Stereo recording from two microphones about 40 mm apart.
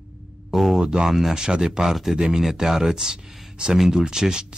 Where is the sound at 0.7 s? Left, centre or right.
Centre.